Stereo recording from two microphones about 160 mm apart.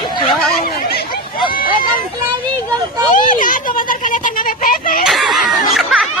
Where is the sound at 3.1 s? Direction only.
55° left (ahead or behind).